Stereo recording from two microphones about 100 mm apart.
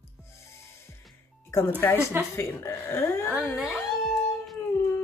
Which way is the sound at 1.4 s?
25° left (ahead or behind).